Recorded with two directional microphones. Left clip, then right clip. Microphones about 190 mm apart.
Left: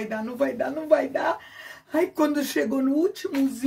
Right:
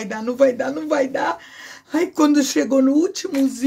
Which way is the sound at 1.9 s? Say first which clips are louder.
Right 5 dB; 50° right (ahead or behind).